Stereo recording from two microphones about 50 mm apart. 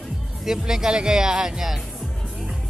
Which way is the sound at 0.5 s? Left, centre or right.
Centre.